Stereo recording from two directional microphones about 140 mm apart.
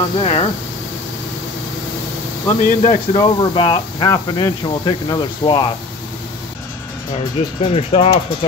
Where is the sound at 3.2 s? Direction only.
35° left (ahead or behind).